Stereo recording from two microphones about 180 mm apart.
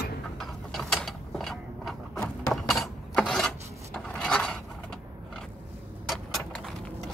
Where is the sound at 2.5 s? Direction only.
Centre (ahead or behind).